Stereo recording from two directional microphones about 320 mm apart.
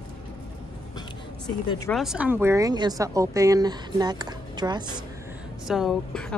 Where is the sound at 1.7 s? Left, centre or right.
Centre.